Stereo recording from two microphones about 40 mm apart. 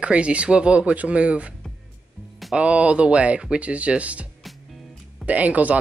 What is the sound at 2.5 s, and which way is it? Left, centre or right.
Speech, right.